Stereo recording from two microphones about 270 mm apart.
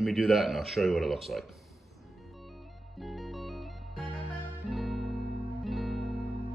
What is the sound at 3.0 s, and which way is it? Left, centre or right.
Music, centre.